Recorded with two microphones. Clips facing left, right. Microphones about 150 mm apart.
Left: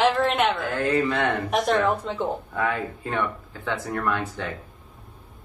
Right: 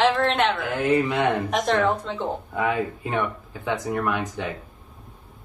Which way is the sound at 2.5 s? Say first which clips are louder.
Right 2 dB; 15° right (ahead or behind).